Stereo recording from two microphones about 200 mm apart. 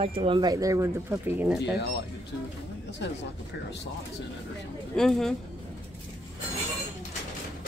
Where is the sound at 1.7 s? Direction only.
55° left (ahead or behind).